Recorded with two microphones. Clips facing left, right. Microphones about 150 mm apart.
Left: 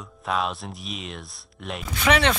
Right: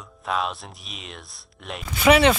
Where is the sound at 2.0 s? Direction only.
5° right (ahead or behind).